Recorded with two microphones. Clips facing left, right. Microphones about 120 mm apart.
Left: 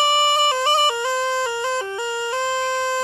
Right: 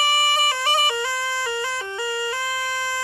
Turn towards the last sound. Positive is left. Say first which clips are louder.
# left 6 dB
turn(degrees=20)  # may be behind; listen again after turning